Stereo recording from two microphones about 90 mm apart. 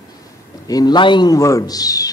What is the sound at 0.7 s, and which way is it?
Speech, 50° left (ahead or behind).